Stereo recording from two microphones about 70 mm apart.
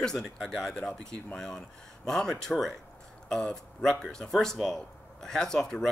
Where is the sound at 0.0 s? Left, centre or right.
Centre.